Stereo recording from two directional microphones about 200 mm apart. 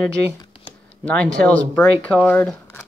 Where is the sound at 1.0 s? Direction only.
5° left (ahead or behind).